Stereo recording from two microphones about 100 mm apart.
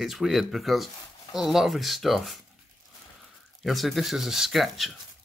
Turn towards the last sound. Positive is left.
turn(degrees=0)  # may be behind; listen again after turning